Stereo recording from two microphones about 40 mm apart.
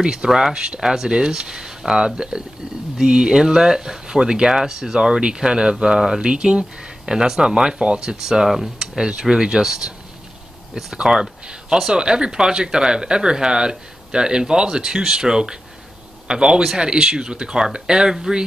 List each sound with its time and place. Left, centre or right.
0.0 s speech: right